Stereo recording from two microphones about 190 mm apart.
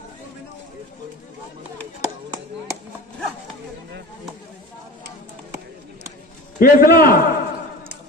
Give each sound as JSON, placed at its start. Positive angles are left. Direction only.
{"t": 6.6, "sound": "a man's voice", "side_deg": 50}